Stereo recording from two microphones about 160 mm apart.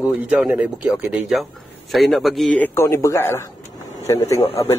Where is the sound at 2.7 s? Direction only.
15° left (ahead or behind).